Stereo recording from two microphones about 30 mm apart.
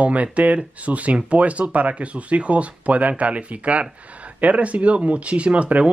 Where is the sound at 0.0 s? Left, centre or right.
Right.